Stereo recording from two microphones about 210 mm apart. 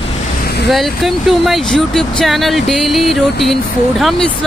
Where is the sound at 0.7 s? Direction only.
Centre (ahead or behind).